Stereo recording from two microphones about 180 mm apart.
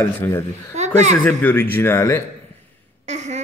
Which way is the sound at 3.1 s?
40° right (ahead or behind).